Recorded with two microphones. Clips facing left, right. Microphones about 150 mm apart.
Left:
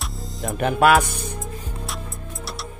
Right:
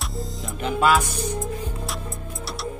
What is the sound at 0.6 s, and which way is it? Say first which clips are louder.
Music: left 3 dB; 55° left (ahead or behind).